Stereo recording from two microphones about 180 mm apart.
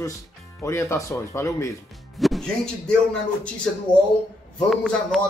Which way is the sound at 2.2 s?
Centre (ahead or behind).